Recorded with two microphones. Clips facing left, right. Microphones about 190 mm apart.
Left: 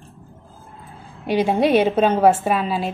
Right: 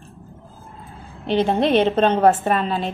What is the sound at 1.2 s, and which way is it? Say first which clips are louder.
A woman's voice: left 1 dB; 10° left (ahead or behind).